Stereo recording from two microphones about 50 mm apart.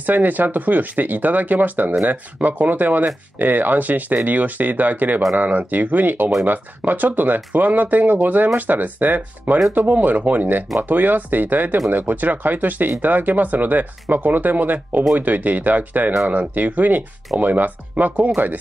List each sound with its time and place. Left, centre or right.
0.0 s speech: right